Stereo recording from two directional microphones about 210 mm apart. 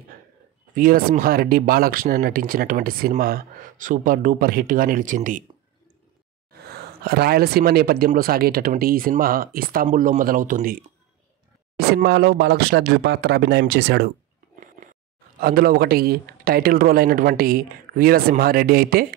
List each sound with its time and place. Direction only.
0.7 s speech: 45° right (ahead or behind)
6.7 s speech: 50° right (ahead or behind)
11.8 s speech: 50° right (ahead or behind)
15.4 s speech: 45° right (ahead or behind)